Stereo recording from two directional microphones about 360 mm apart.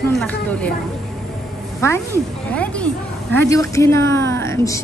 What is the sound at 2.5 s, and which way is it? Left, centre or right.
A woman's voice, centre.